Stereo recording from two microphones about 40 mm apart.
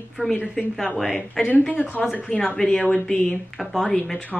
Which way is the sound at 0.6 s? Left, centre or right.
Centre.